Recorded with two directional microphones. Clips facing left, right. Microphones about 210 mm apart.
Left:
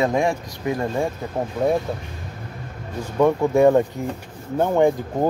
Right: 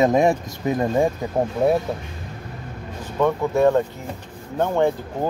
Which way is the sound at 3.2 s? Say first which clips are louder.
Left 3 dB; 15° left (ahead or behind).